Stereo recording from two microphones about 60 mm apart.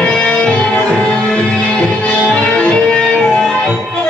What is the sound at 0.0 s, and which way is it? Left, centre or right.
Music, centre.